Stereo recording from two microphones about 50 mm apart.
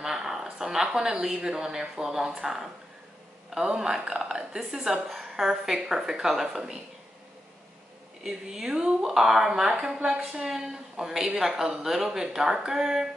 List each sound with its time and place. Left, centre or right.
0.0 s speech: centre
3.7 s speech: centre
8.2 s speech: centre